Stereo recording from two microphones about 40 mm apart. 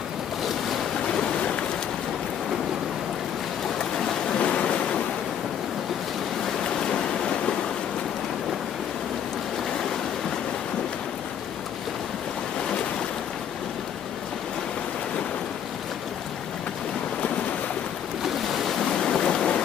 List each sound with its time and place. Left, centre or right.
1.2 s a sound: left
3.9 s boat: centre
4.4 s waves: left
6.9 s boat: left
18.2 s waves: centre
18.9 s a sound: centre